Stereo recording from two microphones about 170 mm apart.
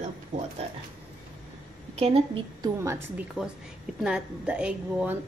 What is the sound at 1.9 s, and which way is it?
Speech, 35° right (ahead or behind).